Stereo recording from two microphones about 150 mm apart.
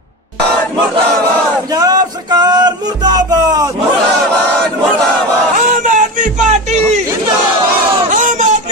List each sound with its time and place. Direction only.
1.7 s music: 25° right (ahead or behind)
5.6 s a sound: 60° right (ahead or behind)
8.1 s child singing: 60° right (ahead or behind)